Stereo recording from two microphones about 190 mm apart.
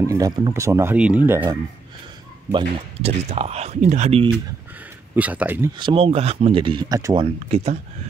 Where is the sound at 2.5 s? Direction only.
30° right (ahead or behind).